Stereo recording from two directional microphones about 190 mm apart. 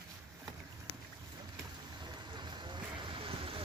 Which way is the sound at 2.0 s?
25° right (ahead or behind).